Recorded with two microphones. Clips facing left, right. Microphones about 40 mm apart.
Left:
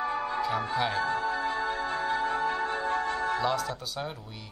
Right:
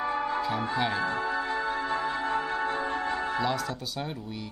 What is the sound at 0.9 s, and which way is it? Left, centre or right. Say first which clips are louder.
Speech: even; right.